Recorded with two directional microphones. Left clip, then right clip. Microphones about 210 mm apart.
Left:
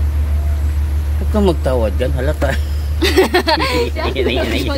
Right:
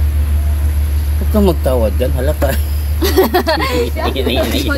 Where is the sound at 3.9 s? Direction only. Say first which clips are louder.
Right 1 dB; 15° right (ahead or behind).